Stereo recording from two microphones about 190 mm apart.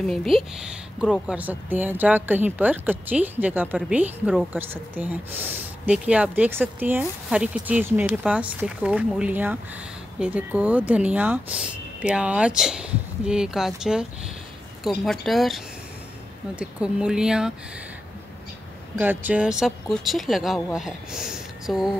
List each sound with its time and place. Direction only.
0.0 s a woman's voice: centre (ahead or behind)
15.0 s speech: centre (ahead or behind)
18.9 s speech: 10° right (ahead or behind)